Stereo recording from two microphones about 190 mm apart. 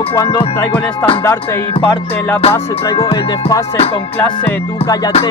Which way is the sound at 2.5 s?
20° left (ahead or behind).